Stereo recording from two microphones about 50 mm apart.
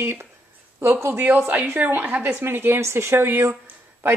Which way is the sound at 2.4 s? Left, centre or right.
Right.